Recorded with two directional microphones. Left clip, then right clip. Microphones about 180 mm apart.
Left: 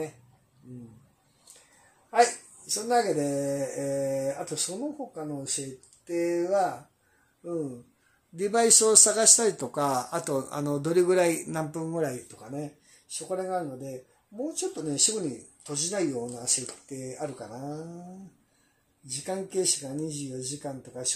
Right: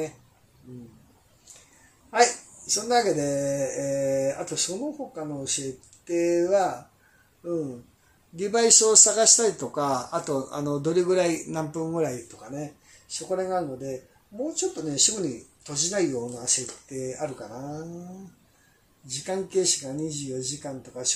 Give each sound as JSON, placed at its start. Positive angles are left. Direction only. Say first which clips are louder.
{"t": 2.0, "sound": "speech", "louder": "right 2 dB", "side_deg": 20}
{"t": 8.4, "sound": "speech", "louder": "right 2 dB", "side_deg": 30}
{"t": 17.4, "sound": "speech", "louder": "right 1 dB", "side_deg": 0}
{"t": 19.0, "sound": "speech", "louder": "right 3 dB", "side_deg": 20}